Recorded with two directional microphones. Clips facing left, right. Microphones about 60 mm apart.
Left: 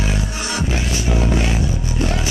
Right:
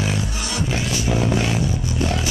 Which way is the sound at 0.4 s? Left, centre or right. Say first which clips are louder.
Left 2 dB; left.